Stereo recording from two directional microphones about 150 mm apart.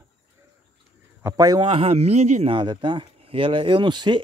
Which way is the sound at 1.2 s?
25° right (ahead or behind).